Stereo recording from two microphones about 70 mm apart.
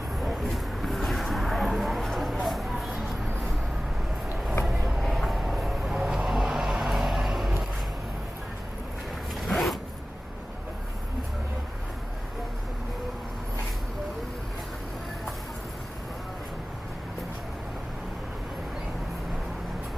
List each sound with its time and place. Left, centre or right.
0.2 s a sound: centre
4.8 s vehicle: centre
9.5 s zipper: centre